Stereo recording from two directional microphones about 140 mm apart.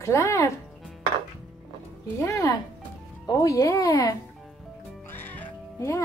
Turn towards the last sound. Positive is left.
turn(degrees=10)  # may be behind; listen again after turning